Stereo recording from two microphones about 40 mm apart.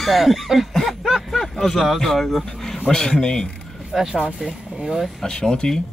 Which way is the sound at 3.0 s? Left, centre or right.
Centre.